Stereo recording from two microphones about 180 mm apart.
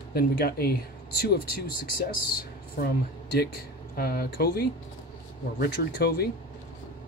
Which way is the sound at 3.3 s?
60° left (ahead or behind).